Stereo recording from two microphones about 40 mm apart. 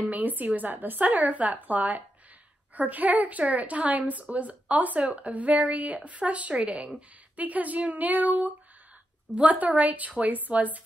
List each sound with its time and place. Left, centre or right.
0.0 s a woman's voice: right
7.3 s a woman's voice: right